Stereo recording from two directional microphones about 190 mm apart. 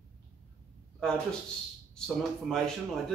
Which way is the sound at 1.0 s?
5° left (ahead or behind).